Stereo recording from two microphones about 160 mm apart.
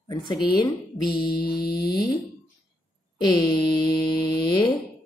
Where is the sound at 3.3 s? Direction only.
30° left (ahead or behind).